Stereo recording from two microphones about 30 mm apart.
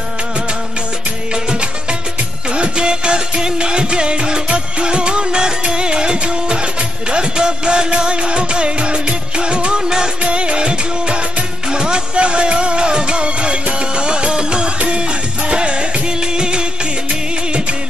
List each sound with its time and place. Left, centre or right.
1.3 s music: right
10.3 s music: right
17.1 s music of bollywood: right